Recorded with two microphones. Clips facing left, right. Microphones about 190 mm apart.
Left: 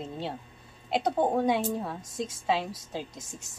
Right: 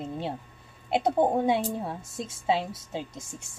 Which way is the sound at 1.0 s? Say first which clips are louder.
Right 2 dB; 25° right (ahead or behind).